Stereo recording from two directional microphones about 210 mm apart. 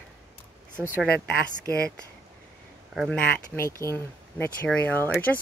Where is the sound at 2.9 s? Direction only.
5° right (ahead or behind).